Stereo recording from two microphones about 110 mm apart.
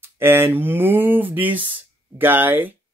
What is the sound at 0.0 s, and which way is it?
Speech, 20° right (ahead or behind).